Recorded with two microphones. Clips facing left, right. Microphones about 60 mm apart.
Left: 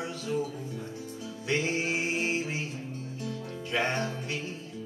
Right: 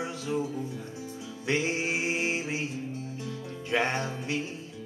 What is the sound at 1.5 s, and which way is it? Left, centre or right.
Music, right.